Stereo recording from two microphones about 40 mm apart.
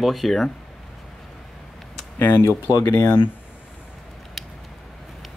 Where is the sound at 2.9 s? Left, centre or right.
Left.